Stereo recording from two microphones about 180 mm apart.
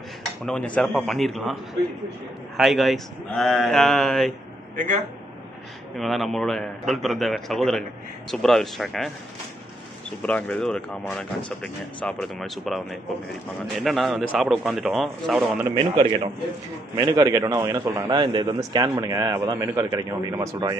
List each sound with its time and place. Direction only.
0.5 s speech: 5° left (ahead or behind)
4.7 s a man's voice: 45° right (ahead or behind)
5.9 s speech: centre (ahead or behind)
10.2 s speech: 5° left (ahead or behind)
15.7 s a man's voice: 30° right (ahead or behind)